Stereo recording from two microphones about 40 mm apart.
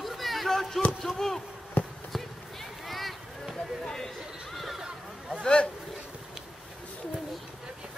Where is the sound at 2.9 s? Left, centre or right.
Centre.